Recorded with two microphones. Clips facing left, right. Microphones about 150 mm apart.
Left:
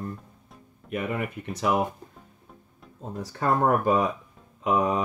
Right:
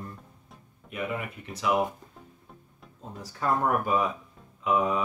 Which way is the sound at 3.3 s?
50° left (ahead or behind).